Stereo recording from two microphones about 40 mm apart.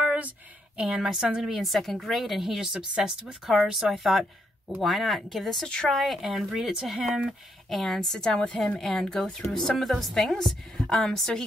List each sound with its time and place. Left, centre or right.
0.7 s a woman's voice: right
1.4 s a woman's voice: centre
3.4 s a woman's voice: centre
7.2 s a woman's voice: centre; by 8.5 s left
8.7 s a woman's voice: centre
11.1 s a woman's voice: centre